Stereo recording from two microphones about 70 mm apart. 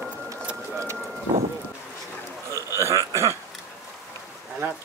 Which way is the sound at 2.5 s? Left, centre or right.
Right.